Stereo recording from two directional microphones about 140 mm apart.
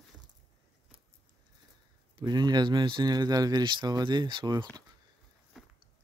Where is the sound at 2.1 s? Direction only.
30° right (ahead or behind).